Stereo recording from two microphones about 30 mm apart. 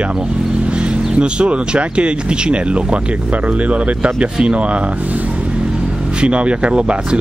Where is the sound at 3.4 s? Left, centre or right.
Right.